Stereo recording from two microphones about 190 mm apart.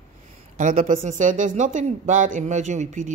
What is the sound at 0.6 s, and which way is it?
Speech, 40° right (ahead or behind).